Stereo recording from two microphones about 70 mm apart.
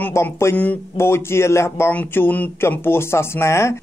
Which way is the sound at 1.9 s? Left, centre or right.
Left.